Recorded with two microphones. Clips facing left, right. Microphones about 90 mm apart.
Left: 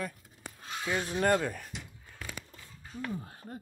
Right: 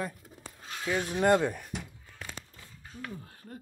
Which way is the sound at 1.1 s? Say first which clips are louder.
Right 4 dB; 15° right (ahead or behind).